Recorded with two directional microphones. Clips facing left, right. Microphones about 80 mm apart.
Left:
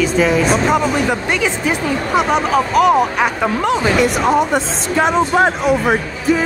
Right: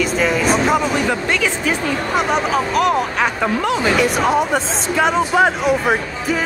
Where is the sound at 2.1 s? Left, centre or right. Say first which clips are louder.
Left 3 dB; centre.